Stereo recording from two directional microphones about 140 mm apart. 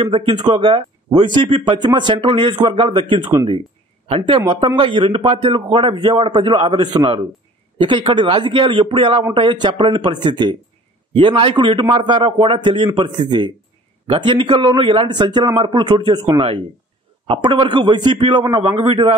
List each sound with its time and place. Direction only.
0.0 s speech: 40° right (ahead or behind)